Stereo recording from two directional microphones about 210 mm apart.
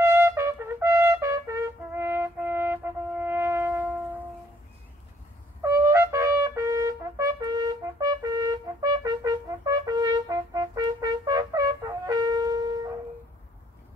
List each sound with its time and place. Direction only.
0.0 s trumpet: 10° right (ahead or behind)
5.6 s trumpet: 15° right (ahead or behind)